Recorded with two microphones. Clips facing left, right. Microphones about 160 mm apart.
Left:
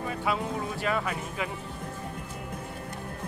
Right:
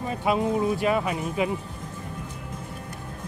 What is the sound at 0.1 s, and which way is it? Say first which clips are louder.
Speech: right 8 dB; 20° right (ahead or behind).